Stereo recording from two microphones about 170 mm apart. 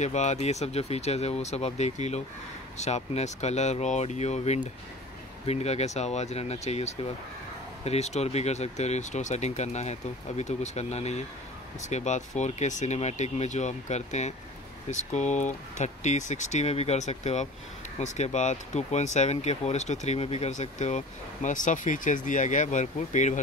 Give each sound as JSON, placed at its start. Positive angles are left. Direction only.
{"t": 0.0, "sound": "speech", "side_deg": 45}